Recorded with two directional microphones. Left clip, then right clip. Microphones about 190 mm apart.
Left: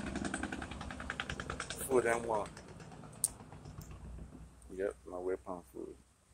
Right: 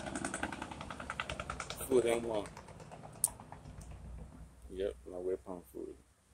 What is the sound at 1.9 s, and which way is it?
Speech, 5° right (ahead or behind).